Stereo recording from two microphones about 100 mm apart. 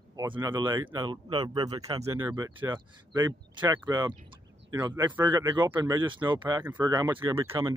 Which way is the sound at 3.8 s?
45° right (ahead or behind).